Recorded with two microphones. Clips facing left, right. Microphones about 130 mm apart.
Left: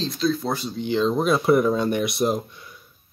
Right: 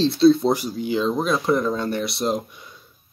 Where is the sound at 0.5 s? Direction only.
5° right (ahead or behind); by 2.2 s 15° left (ahead or behind).